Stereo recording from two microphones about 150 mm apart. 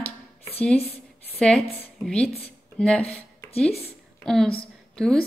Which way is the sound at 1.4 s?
5° left (ahead or behind).